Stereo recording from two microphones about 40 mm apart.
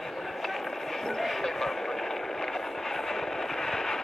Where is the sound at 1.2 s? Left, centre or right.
Centre.